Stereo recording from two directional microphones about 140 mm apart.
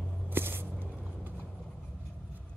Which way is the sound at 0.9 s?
10° right (ahead or behind).